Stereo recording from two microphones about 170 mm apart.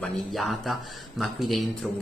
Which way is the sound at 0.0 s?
Centre (ahead or behind).